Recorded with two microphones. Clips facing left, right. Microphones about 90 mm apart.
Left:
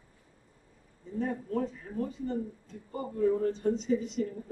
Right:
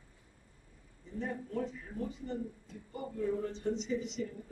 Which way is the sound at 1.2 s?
40° left (ahead or behind).